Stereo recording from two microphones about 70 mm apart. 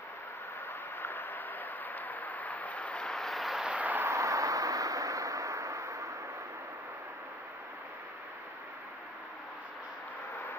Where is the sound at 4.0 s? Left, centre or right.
Right.